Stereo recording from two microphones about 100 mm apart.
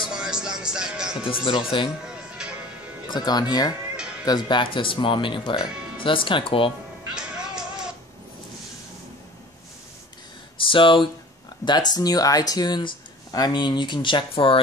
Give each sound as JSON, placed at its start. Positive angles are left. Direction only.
{"t": 0.1, "sound": "music", "side_deg": -5}
{"t": 1.2, "sound": "speech", "side_deg": 60}
{"t": 2.0, "sound": "music", "side_deg": -10}
{"t": 3.1, "sound": "speech", "side_deg": 45}
{"t": 7.2, "sound": "music", "side_deg": -5}
{"t": 10.6, "sound": "speech", "side_deg": 60}
{"t": 11.6, "sound": "speech", "side_deg": 45}